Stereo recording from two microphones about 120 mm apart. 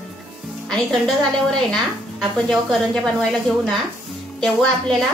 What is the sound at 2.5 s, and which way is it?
A woman's voice, centre (ahead or behind).